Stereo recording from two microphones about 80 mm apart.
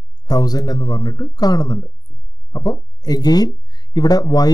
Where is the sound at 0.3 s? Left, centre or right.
Left.